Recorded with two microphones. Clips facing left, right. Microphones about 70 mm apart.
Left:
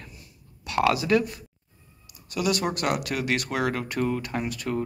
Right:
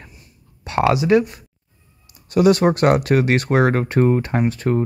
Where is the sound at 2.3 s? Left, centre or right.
Right.